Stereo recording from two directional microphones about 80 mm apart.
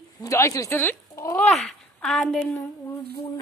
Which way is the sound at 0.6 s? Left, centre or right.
Left.